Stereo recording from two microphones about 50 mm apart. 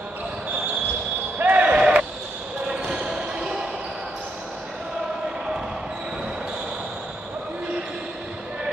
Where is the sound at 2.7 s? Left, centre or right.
Centre.